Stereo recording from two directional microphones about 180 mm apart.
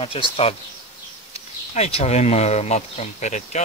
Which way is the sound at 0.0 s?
30° left (ahead or behind).